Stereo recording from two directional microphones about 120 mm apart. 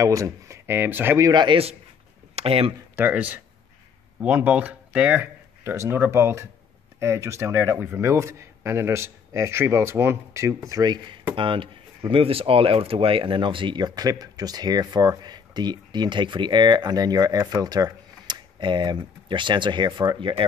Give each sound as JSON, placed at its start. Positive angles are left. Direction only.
{"t": 0.0, "sound": "speech", "side_deg": -25}
{"t": 1.3, "sound": "speech", "side_deg": -40}
{"t": 2.3, "sound": "speech", "side_deg": -55}
{"t": 3.0, "sound": "speech", "side_deg": -15}